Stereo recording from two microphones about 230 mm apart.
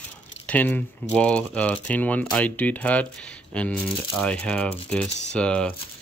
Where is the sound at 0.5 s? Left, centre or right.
Centre.